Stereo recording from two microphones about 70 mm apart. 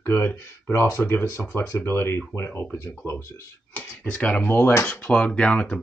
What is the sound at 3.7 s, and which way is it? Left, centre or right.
Speech, left.